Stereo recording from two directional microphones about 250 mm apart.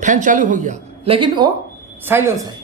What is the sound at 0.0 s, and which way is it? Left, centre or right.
A woman's voice, right.